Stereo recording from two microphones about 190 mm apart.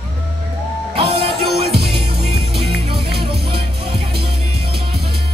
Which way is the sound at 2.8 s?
55° right (ahead or behind).